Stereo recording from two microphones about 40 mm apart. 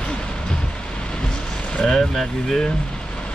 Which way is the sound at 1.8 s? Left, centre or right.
Centre.